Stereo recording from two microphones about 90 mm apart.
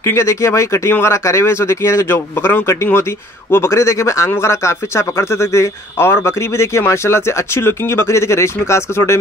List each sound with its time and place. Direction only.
0.0 s speech: 30° left (ahead or behind)